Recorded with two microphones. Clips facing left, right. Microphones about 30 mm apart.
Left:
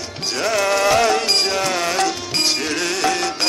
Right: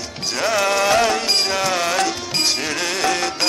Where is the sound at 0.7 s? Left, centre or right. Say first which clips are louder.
Left 2 dB; centre.